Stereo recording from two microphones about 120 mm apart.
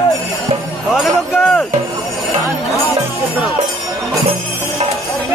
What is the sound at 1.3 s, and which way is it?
Music, 15° left (ahead or behind).